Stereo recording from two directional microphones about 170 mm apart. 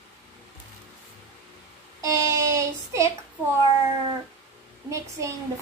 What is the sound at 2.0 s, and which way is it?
A child's voice, 20° right (ahead or behind).